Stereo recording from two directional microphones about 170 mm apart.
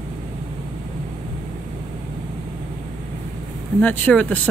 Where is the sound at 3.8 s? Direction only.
10° left (ahead or behind).